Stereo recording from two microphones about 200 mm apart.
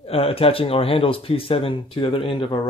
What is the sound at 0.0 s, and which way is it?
Speech, 30° left (ahead or behind).